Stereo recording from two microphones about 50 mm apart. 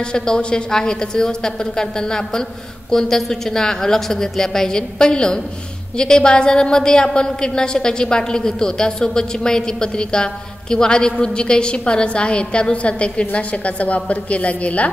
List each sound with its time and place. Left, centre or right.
0.0 s a woman's voice: centre